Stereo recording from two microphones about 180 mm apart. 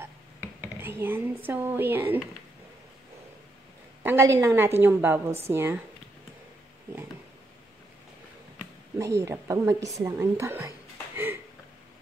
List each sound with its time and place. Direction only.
0.0 s a sound: 10° right (ahead or behind)
4.0 s a woman's voice: 15° right (ahead or behind)
8.9 s a woman's voice: 15° right (ahead or behind)